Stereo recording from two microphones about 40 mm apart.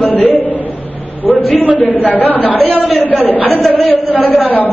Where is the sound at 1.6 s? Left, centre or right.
Left.